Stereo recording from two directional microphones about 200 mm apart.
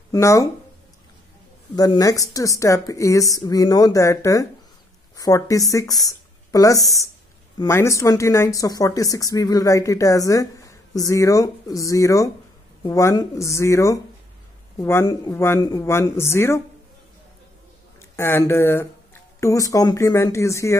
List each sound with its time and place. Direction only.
0.1 s speech: 15° left (ahead or behind)
1.8 s speech: 20° left (ahead or behind)
18.1 s speech: 10° left (ahead or behind)